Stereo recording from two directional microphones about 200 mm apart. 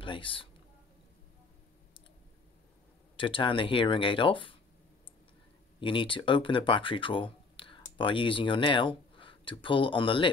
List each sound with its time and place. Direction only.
0.0 s speech: 25° left (ahead or behind)
3.2 s speech: 25° left (ahead or behind)
5.8 s speech: 25° left (ahead or behind)